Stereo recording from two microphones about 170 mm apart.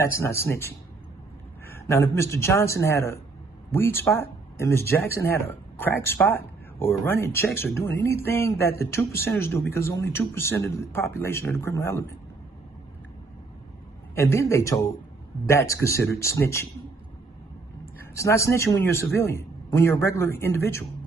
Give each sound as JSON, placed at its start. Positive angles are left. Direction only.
{"t": 0.0, "sound": "speech", "side_deg": 15}
{"t": 1.7, "sound": "speech", "side_deg": 15}
{"t": 14.1, "sound": "speech", "side_deg": 15}
{"t": 18.1, "sound": "speech", "side_deg": 15}